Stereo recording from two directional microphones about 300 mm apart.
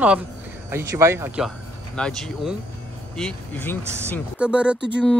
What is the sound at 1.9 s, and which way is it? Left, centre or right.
Speech, centre.